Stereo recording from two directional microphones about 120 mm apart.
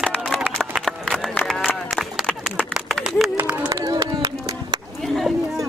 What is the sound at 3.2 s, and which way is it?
Run, centre (ahead or behind).